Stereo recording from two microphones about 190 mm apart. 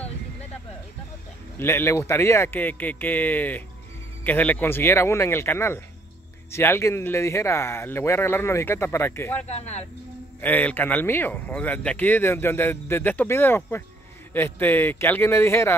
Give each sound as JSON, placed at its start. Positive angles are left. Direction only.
{"t": 1.6, "sound": "speech", "side_deg": 15}
{"t": 9.5, "sound": "speech", "side_deg": 35}
{"t": 10.4, "sound": "speech", "side_deg": 10}